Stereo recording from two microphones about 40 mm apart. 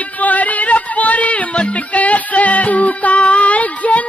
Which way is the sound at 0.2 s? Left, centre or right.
Left.